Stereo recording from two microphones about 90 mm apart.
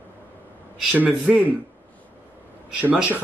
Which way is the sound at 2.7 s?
15° right (ahead or behind).